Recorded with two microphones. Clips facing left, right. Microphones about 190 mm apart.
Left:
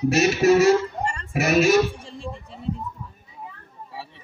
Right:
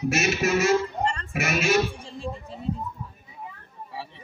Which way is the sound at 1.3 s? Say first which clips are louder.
Left 10 dB; 35° left (ahead or behind).